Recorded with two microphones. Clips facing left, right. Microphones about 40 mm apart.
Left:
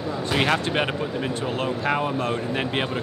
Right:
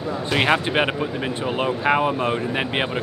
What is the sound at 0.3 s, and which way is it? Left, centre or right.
Speech, centre.